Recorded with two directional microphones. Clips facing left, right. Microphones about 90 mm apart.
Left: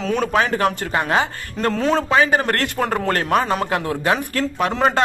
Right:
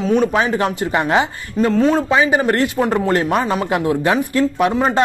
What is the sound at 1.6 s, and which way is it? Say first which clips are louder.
Speech: right 4 dB; centre (ahead or behind).